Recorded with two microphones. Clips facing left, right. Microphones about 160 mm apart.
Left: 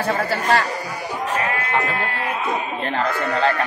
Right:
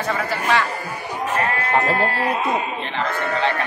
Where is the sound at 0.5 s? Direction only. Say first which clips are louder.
Even; 40° left (ahead or behind).